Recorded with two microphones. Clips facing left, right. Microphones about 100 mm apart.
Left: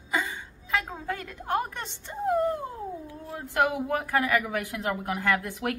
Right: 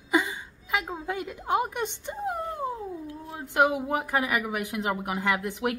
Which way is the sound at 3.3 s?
20° right (ahead or behind).